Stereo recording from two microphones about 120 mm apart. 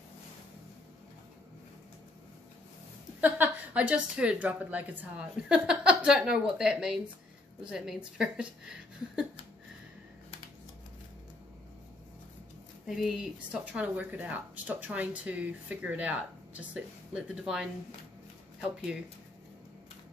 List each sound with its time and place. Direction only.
3.2 s a woman's voice: 15° right (ahead or behind)
12.8 s speech: 5° right (ahead or behind)